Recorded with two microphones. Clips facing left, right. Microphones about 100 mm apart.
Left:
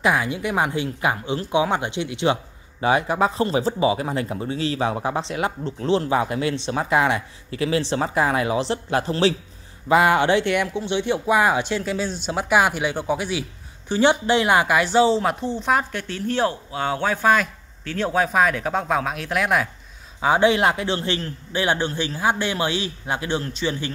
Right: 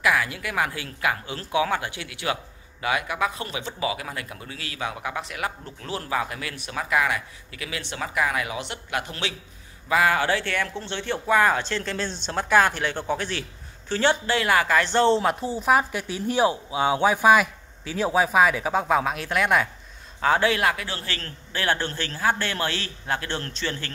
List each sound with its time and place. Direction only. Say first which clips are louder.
0.0 s speech: left 3 dB; 25° left (ahead or behind); by 19.7 s centre (ahead or behind)
20.2 s speech: left 4 dB; 15° left (ahead or behind)